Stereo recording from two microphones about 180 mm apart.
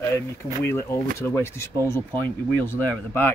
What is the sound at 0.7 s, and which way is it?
Speech, 15° left (ahead or behind).